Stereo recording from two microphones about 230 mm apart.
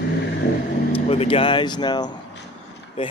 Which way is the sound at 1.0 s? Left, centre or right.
Left.